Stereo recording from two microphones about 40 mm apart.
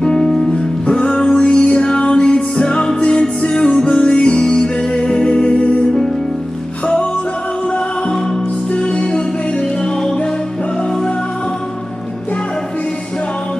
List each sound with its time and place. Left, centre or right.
0.0 s music: left
0.8 s music: left
8.7 s music: left